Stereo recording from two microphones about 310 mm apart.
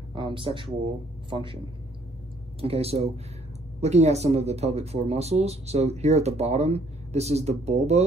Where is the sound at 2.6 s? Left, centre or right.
Centre.